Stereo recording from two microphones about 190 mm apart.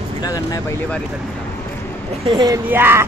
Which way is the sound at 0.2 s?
20° left (ahead or behind).